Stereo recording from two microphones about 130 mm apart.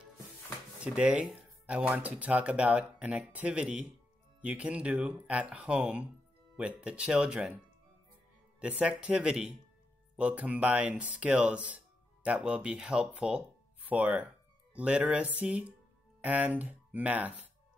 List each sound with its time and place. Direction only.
0.7 s speech: 10° right (ahead or behind)